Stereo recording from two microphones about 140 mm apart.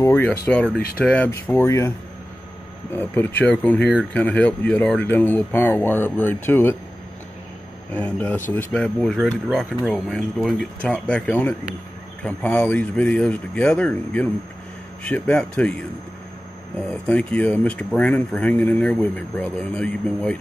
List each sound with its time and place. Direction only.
0.0 s speech: 15° left (ahead or behind)
7.9 s speech: 10° left (ahead or behind)
16.9 s speech: 5° left (ahead or behind)